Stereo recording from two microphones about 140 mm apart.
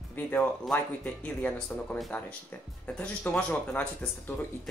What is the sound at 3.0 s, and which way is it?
Speech, 10° left (ahead or behind).